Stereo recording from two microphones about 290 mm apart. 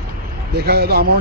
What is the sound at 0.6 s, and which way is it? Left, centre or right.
Speech, right.